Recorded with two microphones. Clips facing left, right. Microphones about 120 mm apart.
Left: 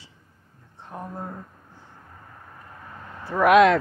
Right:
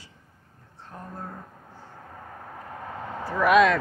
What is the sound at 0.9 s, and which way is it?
Speech, 20° left (ahead or behind).